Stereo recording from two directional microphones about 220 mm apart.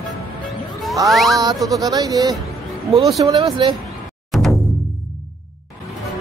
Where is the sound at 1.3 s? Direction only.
15° right (ahead or behind).